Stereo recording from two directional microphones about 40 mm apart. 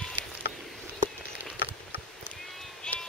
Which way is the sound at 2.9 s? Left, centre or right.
Left.